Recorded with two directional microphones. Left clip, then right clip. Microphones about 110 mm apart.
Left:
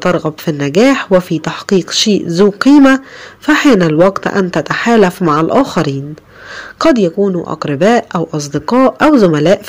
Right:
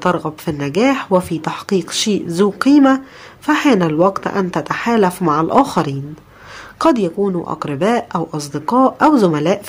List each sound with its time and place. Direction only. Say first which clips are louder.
0.0 s speech: left 4 dB; 25° left (ahead or behind)
2.7 s speech: left 3 dB; 35° left (ahead or behind); by 9.4 s 20° left (ahead or behind)